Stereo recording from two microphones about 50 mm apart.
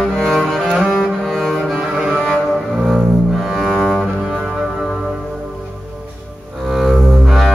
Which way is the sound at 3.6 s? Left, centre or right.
Centre.